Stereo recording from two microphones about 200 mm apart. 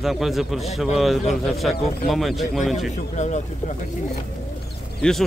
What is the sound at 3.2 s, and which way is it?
Speech, 35° left (ahead or behind).